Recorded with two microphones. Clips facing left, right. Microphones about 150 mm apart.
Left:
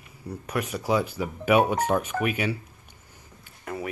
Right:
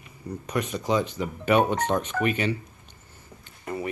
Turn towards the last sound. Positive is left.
turn(degrees=0)  # may be behind; listen again after turning